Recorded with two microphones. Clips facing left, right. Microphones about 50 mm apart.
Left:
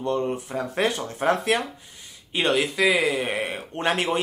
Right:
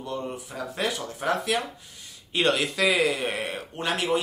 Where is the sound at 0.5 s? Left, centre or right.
Left.